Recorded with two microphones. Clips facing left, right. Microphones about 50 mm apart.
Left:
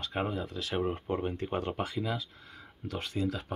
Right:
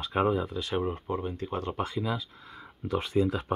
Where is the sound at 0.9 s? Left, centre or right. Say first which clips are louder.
Even; left.